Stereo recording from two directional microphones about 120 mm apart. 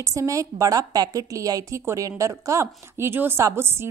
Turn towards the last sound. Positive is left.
turn(degrees=-20)  # may be behind; listen again after turning